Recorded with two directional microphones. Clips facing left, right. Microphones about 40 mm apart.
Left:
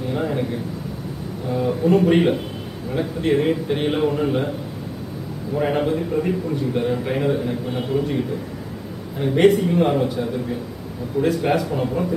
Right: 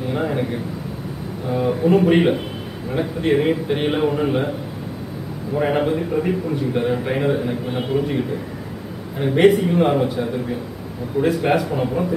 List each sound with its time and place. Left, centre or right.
0.1 s a man's voice: right
1.6 s a man's voice: centre
5.6 s a man's voice: centre
9.2 s a man's voice: centre
11.4 s a man's voice: right